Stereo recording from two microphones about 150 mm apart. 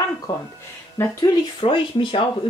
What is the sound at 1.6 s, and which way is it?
Speech, 35° left (ahead or behind).